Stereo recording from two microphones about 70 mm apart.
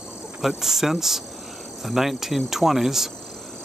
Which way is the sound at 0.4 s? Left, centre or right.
Centre.